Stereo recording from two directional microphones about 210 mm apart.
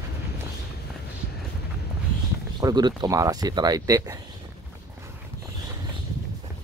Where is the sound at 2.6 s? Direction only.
20° right (ahead or behind).